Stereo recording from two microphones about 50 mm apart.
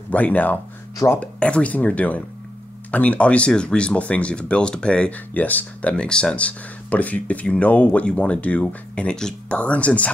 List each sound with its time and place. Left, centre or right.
0.1 s speech: left
5.1 s speech: left
6.0 s speech: centre
6.3 s speech: left